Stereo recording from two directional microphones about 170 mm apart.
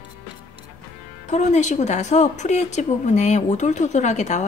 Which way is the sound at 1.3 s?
45° left (ahead or behind).